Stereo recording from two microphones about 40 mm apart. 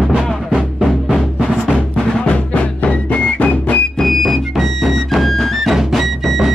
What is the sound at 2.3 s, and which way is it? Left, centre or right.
Music, left.